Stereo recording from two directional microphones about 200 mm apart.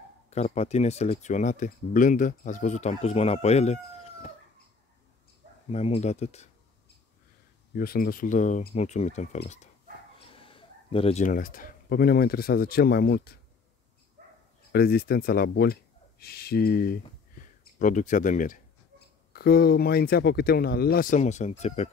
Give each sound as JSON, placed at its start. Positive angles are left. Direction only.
{"t": 0.3, "sound": "speech", "side_deg": 35}
{"t": 5.7, "sound": "speech", "side_deg": 30}
{"t": 7.7, "sound": "speech", "side_deg": 50}
{"t": 14.7, "sound": "speech", "side_deg": 50}